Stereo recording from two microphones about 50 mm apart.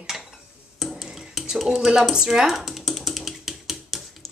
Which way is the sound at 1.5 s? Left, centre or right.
Centre.